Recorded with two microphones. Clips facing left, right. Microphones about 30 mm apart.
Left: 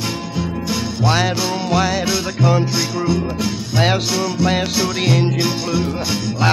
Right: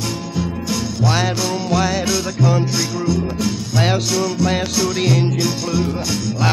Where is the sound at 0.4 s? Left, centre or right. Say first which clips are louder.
Even; centre.